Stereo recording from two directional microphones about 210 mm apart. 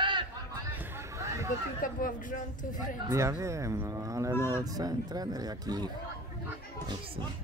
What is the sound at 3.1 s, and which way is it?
Speech, 15° right (ahead or behind).